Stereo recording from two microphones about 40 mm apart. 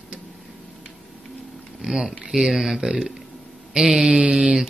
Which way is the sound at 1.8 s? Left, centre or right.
Centre.